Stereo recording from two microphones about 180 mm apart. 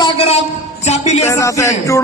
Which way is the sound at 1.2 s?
15° left (ahead or behind).